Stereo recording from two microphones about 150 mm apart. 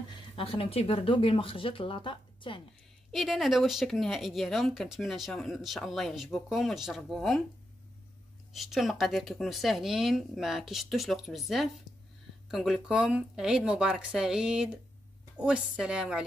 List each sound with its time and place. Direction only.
0.4 s speech: 40° left (ahead or behind)
3.1 s speech: centre (ahead or behind)
8.5 s speech: centre (ahead or behind)